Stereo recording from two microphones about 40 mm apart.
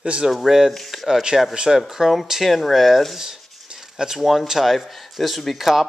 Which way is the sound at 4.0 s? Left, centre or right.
Centre.